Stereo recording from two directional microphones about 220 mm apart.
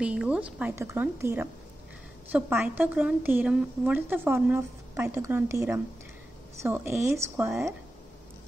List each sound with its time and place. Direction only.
0.0 s a woman's voice: 5° right (ahead or behind)